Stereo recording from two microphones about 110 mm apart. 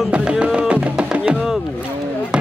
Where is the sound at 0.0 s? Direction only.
10° right (ahead or behind).